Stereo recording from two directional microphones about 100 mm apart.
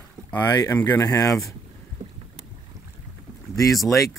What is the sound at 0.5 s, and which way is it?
Speech, 35° left (ahead or behind).